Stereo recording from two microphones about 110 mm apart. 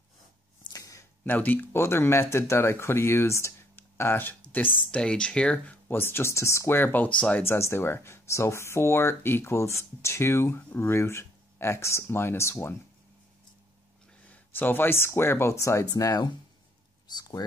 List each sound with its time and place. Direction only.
0.7 s a sound: 30° left (ahead or behind)
1.2 s speech: 15° left (ahead or behind)
14.3 s speech: 20° left (ahead or behind); by 17.5 s 35° left (ahead or behind)